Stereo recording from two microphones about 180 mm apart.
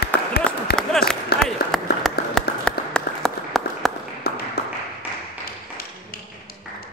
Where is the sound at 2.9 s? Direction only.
5° left (ahead or behind).